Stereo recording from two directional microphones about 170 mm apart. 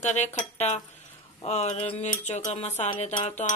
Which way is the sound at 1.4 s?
40° left (ahead or behind).